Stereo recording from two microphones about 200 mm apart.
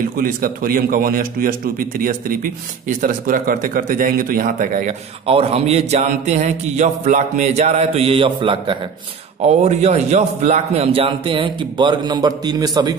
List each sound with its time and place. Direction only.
0.0 s a man's voice: 45° right (ahead or behind)
5.2 s a sound: 30° right (ahead or behind)
9.4 s a man's voice: 35° right (ahead or behind)